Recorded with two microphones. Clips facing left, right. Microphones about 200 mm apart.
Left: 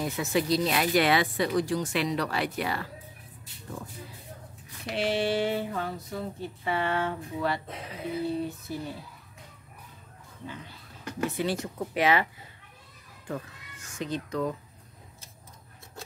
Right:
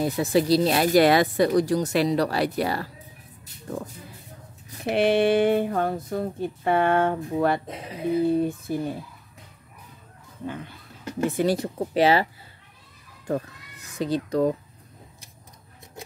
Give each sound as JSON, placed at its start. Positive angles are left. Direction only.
{"t": 0.0, "sound": "speech", "side_deg": -35}
{"t": 4.9, "sound": "speech", "side_deg": -60}
{"t": 10.4, "sound": "speech", "side_deg": -55}
{"t": 11.5, "sound": "speech", "side_deg": -30}
{"t": 13.3, "sound": "speech", "side_deg": -35}